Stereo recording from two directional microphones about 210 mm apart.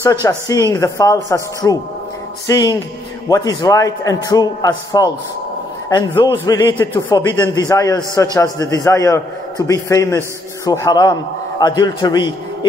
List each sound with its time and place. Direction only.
0.0 s a man's voice: 15° left (ahead or behind)